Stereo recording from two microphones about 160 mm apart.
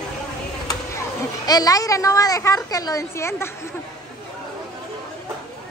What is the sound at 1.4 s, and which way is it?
A woman's voice, 25° left (ahead or behind).